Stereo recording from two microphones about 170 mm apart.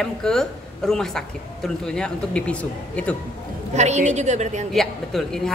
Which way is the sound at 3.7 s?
40° right (ahead or behind).